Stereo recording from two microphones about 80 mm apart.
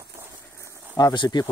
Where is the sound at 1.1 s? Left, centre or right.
Left.